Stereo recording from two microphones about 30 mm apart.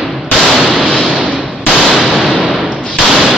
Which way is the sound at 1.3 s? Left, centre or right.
Left.